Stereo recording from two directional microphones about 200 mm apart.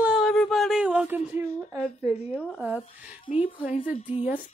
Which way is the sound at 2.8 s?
25° left (ahead or behind).